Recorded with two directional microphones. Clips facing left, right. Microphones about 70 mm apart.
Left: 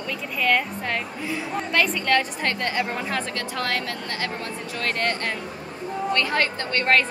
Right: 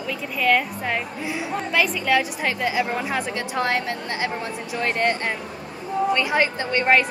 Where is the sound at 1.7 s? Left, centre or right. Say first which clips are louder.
Right 1 dB; centre.